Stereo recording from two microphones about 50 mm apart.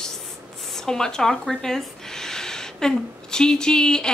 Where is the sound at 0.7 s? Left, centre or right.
Centre.